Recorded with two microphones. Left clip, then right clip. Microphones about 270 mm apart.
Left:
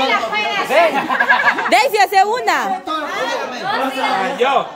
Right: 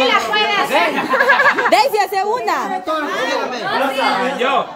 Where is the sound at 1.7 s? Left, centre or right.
Centre.